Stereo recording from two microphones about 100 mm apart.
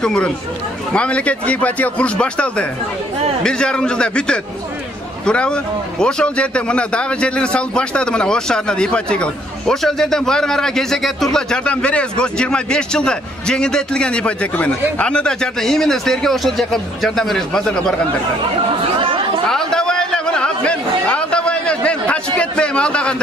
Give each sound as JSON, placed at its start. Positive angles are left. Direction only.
{"t": 0.0, "sound": "a man's voice", "side_deg": 10}
{"t": 18.9, "sound": "chatter", "side_deg": -60}
{"t": 19.5, "sound": "a sound", "side_deg": 5}